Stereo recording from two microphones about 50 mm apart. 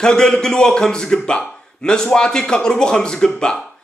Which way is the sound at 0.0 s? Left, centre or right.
Centre.